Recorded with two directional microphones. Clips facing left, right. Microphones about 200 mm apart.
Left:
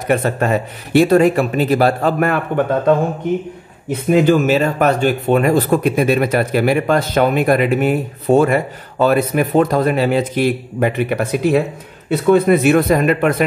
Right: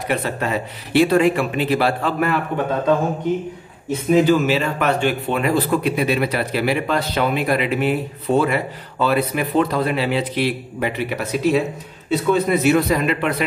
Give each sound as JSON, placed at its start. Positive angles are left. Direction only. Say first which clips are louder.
{"t": 0.1, "sound": "speech", "louder": "left 6 dB", "side_deg": 50}
{"t": 4.1, "sound": "speech", "louder": "left 3 dB", "side_deg": 50}